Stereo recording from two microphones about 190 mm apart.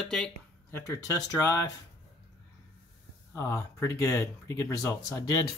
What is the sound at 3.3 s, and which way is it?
Speech, 15° left (ahead or behind).